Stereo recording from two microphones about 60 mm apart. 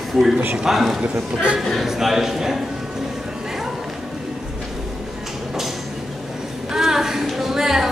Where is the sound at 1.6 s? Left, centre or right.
Centre.